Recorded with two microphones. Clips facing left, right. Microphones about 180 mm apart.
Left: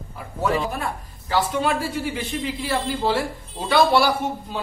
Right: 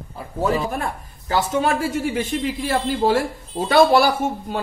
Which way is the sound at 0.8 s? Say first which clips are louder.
Right 2 dB; 45° right (ahead or behind).